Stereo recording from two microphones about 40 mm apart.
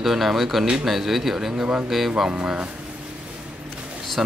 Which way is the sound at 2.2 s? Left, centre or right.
Right.